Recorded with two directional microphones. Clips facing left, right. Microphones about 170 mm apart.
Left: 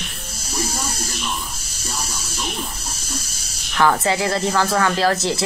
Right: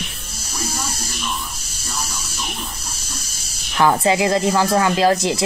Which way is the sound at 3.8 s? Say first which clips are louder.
Right 2 dB; 20° right (ahead or behind).